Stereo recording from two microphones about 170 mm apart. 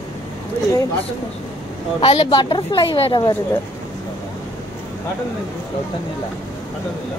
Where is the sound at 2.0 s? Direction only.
30° left (ahead or behind).